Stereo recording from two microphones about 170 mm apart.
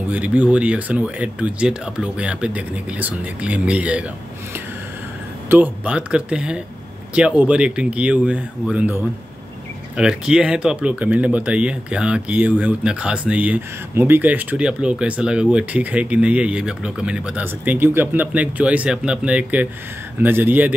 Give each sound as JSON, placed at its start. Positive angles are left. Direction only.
{"t": 0.1, "sound": "speech", "side_deg": -10}
{"t": 5.5, "sound": "speech", "side_deg": -10}
{"t": 9.9, "sound": "speech", "side_deg": -5}